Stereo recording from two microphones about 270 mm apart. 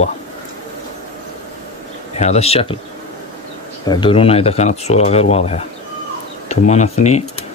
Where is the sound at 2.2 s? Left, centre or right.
Left.